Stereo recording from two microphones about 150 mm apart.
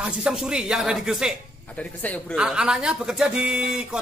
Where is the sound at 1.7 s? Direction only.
10° left (ahead or behind).